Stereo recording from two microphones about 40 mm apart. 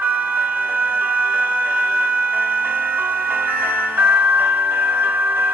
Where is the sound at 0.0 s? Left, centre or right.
Right.